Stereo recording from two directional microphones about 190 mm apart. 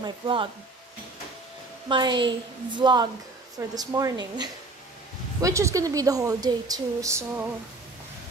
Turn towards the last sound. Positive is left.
turn(degrees=-15)  # may be behind; listen again after turning